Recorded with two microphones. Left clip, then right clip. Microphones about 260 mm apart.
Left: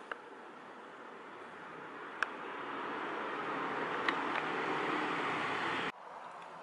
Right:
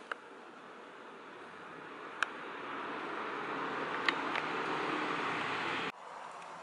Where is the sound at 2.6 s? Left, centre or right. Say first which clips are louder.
Left 1 dB; left.